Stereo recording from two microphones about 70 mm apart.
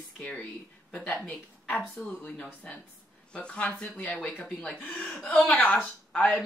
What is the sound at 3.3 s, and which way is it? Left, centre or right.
Speech, centre.